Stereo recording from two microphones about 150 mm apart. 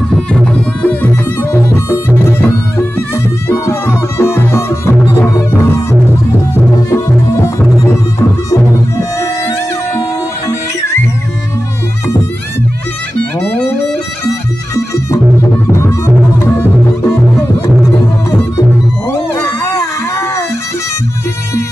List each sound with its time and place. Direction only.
0.1 s music: 5° left (ahead or behind)
3.4 s music: 20° left (ahead or behind)
13.4 s music: 10° left (ahead or behind)
19.0 s music: 15° left (ahead or behind)